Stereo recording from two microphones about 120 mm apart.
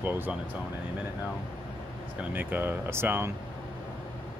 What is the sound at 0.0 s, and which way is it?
Speech, 15° right (ahead or behind).